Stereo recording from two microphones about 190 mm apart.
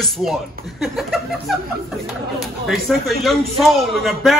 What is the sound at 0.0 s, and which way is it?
Speech, centre (ahead or behind).